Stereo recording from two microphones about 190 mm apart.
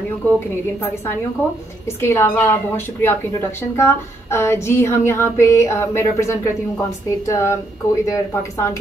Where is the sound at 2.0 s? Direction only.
15° left (ahead or behind).